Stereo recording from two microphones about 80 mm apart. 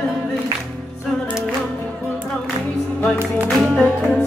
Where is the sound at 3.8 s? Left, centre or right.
Centre.